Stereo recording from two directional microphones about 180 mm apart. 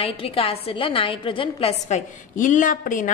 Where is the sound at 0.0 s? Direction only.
30° left (ahead or behind).